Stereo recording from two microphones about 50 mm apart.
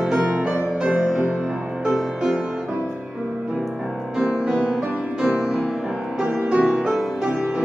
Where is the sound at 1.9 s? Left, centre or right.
Centre.